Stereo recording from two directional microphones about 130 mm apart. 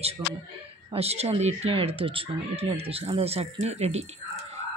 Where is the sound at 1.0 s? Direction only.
55° right (ahead or behind).